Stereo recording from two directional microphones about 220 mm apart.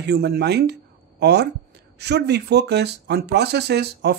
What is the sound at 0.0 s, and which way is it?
Speech, 50° right (ahead or behind).